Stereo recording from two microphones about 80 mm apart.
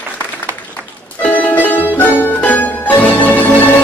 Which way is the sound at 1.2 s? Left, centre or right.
Centre.